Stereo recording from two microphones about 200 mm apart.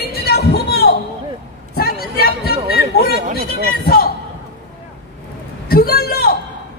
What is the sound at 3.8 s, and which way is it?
Speech, 50° left (ahead or behind).